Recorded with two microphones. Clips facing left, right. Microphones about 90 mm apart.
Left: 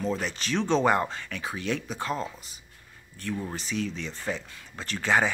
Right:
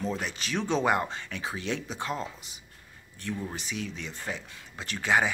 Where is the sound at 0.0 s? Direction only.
15° right (ahead or behind).